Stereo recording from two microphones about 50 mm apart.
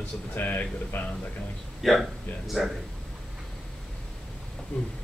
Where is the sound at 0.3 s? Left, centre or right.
Left.